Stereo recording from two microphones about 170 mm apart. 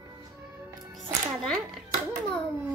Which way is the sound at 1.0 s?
Centre (ahead or behind).